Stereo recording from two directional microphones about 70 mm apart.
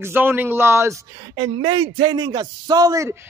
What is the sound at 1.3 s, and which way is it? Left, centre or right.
A man's voice, right.